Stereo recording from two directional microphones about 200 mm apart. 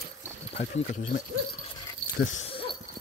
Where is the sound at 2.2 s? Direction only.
35° left (ahead or behind).